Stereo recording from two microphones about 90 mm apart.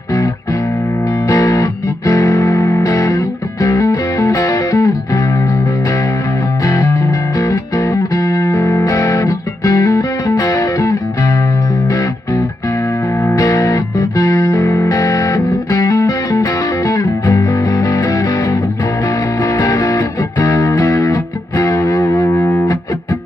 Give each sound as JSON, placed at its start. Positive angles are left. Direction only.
{"t": 1.2, "sound": "music", "side_deg": 40}
{"t": 6.6, "sound": "music", "side_deg": 35}
{"t": 7.1, "sound": "music", "side_deg": 45}
{"t": 8.5, "sound": "music", "side_deg": 30}
{"t": 8.8, "sound": "music", "side_deg": 40}
{"t": 13.4, "sound": "music", "side_deg": 40}